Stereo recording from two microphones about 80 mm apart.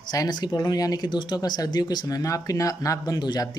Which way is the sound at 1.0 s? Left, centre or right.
Left.